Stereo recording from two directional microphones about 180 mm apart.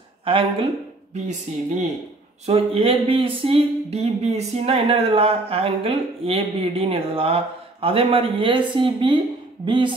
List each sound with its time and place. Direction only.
0.2 s a woman's voice: 30° right (ahead or behind)
1.1 s a woman's voice: 40° right (ahead or behind); by 9.9 s 25° right (ahead or behind)